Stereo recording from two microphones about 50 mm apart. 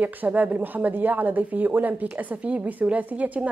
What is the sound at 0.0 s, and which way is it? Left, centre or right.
A woman's voice, right.